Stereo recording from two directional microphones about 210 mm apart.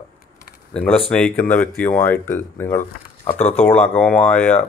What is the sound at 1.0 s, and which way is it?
Speech, 5° left (ahead or behind).